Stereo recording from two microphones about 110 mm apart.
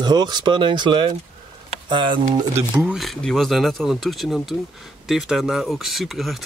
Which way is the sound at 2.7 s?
10° right (ahead or behind).